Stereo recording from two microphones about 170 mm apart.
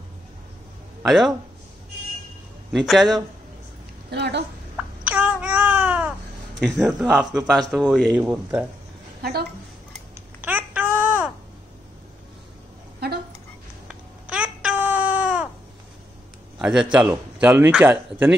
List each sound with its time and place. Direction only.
1.0 s speech: centre (ahead or behind)
2.7 s speech: centre (ahead or behind)
4.1 s a woman's voice: 80° right
5.0 s babbling: 10° right (ahead or behind)
6.6 s speech: centre (ahead or behind)
8.2 s a man's voice: 10° right (ahead or behind)
9.2 s a woman's voice: 70° right (ahead or behind)
10.1 s babbling: 10° right (ahead or behind)
13.0 s a sound: 70° right (ahead or behind)
13.8 s a sound: 5° right (ahead or behind)
16.5 s a man's voice: 5° right (ahead or behind)